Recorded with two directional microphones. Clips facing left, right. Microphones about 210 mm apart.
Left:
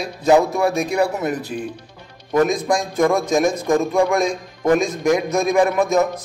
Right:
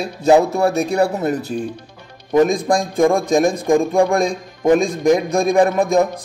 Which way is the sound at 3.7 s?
15° right (ahead or behind).